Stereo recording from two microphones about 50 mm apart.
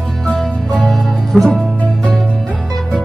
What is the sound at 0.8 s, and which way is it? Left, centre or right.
Music, centre.